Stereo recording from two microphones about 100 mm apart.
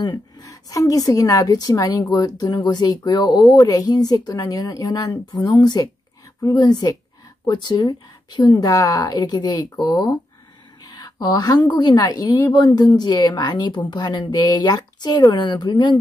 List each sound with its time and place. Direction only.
0.0 s a woman's voice: 40° left (ahead or behind)